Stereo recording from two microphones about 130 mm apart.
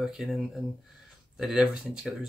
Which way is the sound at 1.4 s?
5° right (ahead or behind).